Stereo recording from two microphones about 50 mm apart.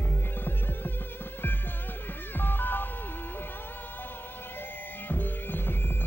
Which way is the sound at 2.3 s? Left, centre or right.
Left.